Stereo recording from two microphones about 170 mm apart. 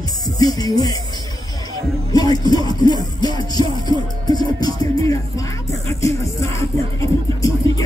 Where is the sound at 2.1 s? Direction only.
25° left (ahead or behind).